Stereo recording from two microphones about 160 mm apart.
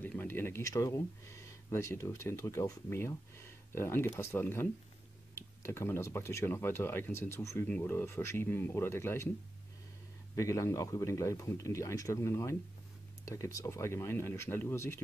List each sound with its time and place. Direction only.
0.0 s speech: 10° left (ahead or behind)
10.3 s a man's voice: 20° left (ahead or behind)